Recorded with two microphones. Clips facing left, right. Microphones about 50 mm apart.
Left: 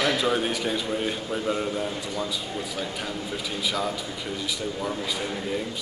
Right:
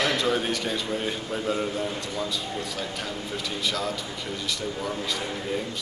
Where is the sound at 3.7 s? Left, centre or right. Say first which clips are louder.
Left 3 dB; centre.